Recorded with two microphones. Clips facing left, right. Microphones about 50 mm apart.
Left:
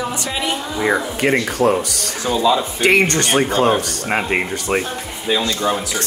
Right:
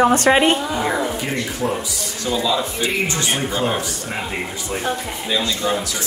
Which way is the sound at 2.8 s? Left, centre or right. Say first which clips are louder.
Left 6 dB; left.